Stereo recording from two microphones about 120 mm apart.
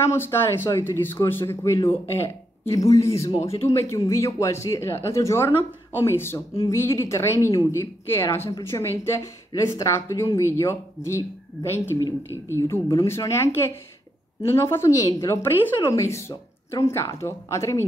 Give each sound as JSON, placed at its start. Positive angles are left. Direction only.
{"t": 0.0, "sound": "a woman's voice", "side_deg": 20}
{"t": 3.3, "sound": "speech", "side_deg": 55}
{"t": 3.9, "sound": "a woman's voice", "side_deg": 25}
{"t": 12.0, "sound": "speech", "side_deg": -20}
{"t": 12.5, "sound": "a woman's voice", "side_deg": 20}